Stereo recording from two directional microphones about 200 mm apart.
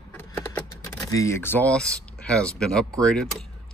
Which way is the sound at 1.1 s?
15° left (ahead or behind).